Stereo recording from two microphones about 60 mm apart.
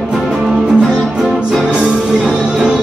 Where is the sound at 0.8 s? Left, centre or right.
Centre.